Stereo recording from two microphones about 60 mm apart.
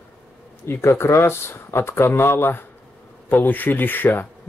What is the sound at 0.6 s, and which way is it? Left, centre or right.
Speech, left.